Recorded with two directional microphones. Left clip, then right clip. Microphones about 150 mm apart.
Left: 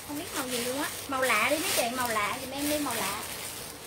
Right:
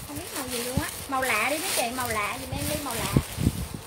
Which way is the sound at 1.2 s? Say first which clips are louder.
Left 1 dB; 5° left (ahead or behind).